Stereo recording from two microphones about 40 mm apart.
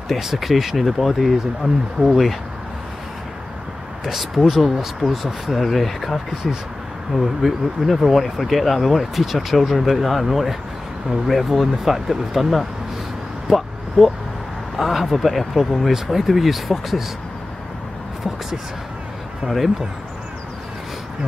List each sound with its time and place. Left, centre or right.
0.2 s speech: centre
4.0 s speech: centre
13.5 s vehicle: centre
14.8 s speech: centre
19.4 s speech: right